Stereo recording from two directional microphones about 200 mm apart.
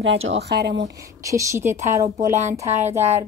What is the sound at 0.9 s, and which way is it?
A woman's voice, 15° right (ahead or behind).